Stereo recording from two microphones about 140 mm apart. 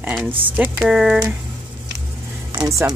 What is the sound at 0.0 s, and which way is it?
Speech, 10° right (ahead or behind).